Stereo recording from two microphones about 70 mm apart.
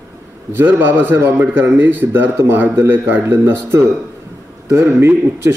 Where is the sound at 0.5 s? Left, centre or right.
Right.